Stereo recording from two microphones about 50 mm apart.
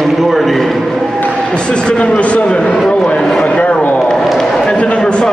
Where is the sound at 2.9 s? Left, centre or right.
Left.